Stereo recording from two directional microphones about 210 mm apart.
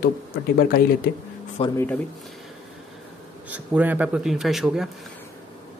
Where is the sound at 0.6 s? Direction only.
45° left (ahead or behind).